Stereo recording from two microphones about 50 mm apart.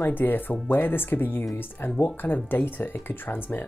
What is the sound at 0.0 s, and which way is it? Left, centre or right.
Speech, left.